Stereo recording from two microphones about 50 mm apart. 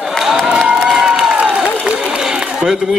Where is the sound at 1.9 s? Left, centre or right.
Centre.